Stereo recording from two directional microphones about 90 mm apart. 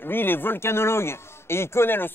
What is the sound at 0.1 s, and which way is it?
Speech, 25° left (ahead or behind).